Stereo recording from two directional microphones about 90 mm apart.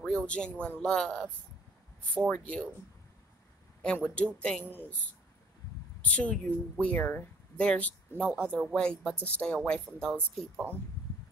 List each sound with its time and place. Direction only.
0.0 s a sound: 10° left (ahead or behind)
0.6 s speech: 10° left (ahead or behind)
3.8 s speech: 15° left (ahead or behind)
4.6 s speech: 20° left (ahead or behind)
6.0 s speech: 15° left (ahead or behind)
8.5 s speech: centre (ahead or behind)
8.8 s speech: 10° left (ahead or behind)
10.5 s speech: 25° right (ahead or behind)